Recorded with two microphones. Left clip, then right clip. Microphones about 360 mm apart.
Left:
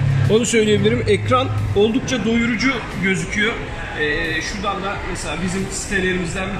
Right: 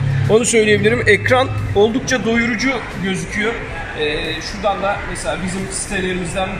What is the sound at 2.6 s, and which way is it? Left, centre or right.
Speech, centre.